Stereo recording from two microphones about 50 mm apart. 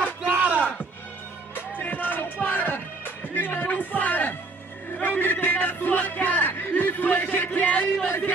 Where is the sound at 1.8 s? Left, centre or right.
Left.